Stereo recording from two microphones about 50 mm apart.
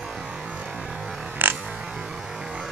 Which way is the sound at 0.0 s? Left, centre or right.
Centre.